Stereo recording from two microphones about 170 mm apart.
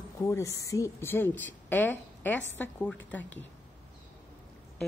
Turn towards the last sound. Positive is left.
turn(degrees=10)  # may be behind; listen again after turning